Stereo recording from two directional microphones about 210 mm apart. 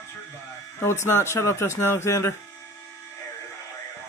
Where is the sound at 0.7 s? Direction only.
10° left (ahead or behind).